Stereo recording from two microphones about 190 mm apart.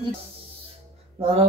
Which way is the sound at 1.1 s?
30° right (ahead or behind).